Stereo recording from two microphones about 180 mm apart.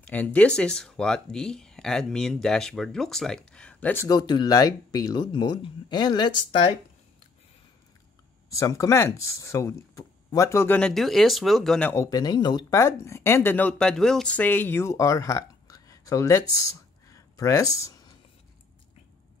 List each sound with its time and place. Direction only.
0.0 s speech: 10° left (ahead or behind); by 6.3 s 25° left (ahead or behind)
8.5 s speech: 15° left (ahead or behind)
11.9 s speech: 20° left (ahead or behind)